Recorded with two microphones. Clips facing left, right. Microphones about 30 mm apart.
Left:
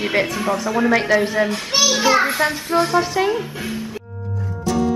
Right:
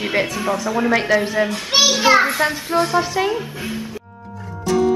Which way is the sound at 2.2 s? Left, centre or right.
Centre.